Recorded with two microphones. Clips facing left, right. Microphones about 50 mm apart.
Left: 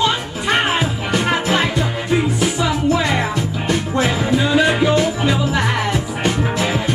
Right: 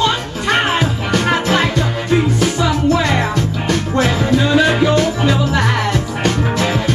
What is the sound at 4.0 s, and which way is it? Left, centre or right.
Music, centre.